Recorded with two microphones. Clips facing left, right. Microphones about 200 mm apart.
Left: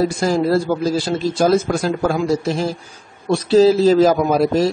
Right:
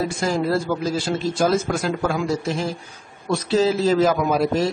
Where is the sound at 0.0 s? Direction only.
40° left (ahead or behind).